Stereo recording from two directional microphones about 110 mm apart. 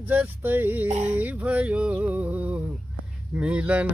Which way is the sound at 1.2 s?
15° right (ahead or behind).